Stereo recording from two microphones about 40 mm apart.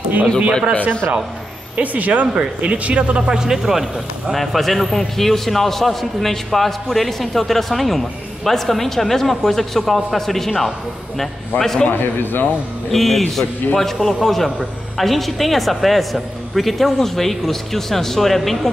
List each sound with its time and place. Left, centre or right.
0.5 s a man's voice: centre
1.8 s speech: right
2.2 s speech: right
3.2 s speech: centre
4.3 s a man's voice: centre
11.9 s a man's voice: left
12.9 s a man's voice: centre